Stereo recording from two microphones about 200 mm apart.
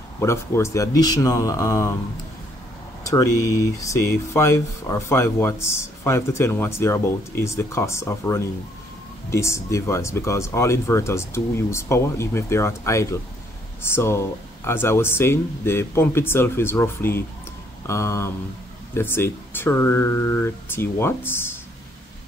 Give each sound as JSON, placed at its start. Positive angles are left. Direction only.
{"t": 0.2, "sound": "speech", "side_deg": 15}
{"t": 3.1, "sound": "speech", "side_deg": 15}